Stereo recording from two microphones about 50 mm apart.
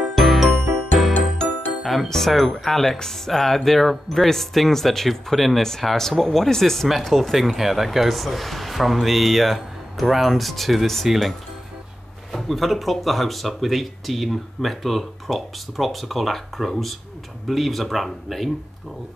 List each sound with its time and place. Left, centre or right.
0.0 s music: centre
1.8 s speech: centre